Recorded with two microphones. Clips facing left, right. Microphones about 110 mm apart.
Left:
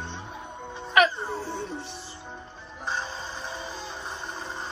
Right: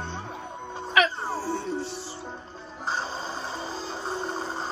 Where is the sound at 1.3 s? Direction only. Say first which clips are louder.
Right 3 dB; centre (ahead or behind).